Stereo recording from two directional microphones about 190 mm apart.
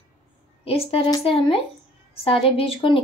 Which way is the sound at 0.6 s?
30° left (ahead or behind).